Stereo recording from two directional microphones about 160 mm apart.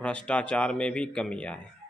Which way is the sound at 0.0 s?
5° left (ahead or behind).